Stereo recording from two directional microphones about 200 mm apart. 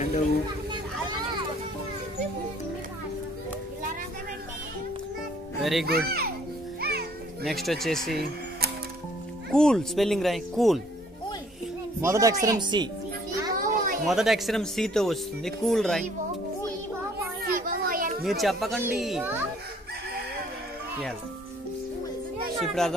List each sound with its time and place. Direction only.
5.6 s a child's voice: centre (ahead or behind)
5.9 s a child's voice: 50° right (ahead or behind)
6.8 s children playing: 50° right (ahead or behind)
7.4 s speech: centre (ahead or behind)
9.5 s speech: 5° left (ahead or behind)
12.0 s speech: 15° right (ahead or behind)
13.6 s a sound: 45° right (ahead or behind)
14.0 s speech: centre (ahead or behind)
17.5 s children playing: 45° right (ahead or behind)
18.2 s speech: centre (ahead or behind)
22.6 s speech: centre (ahead or behind)